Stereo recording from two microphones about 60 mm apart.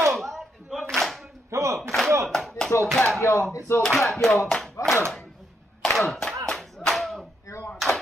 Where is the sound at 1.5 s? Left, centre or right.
Right.